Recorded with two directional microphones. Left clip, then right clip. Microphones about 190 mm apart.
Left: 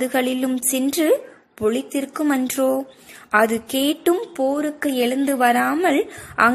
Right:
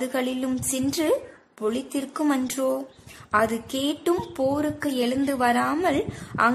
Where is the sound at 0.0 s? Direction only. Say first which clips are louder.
Left 6 dB; 15° left (ahead or behind).